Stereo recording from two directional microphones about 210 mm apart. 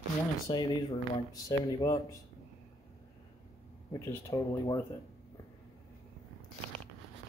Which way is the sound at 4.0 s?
15° left (ahead or behind).